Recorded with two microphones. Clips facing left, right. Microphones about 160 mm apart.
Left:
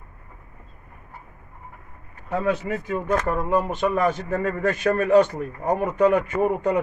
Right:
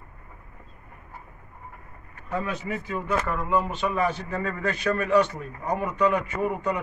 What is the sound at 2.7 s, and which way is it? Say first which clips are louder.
A man's voice: left 4 dB; 50° left (ahead or behind).